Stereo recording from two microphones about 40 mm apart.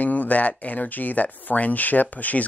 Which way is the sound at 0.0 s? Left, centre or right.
Left.